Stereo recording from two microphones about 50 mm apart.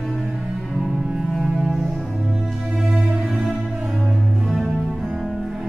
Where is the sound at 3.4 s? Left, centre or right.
Centre.